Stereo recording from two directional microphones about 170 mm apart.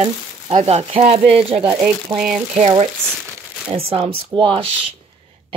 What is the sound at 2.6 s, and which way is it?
Speech, 45° right (ahead or behind).